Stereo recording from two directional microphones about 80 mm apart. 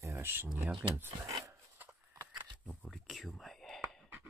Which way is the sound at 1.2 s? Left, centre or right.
Right.